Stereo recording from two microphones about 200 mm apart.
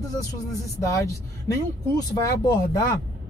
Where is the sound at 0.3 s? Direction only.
15° left (ahead or behind).